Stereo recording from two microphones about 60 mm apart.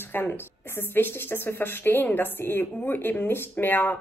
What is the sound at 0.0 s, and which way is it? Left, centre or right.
Speech, left.